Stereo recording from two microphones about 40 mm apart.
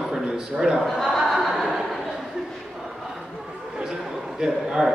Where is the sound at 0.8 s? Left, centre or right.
Centre.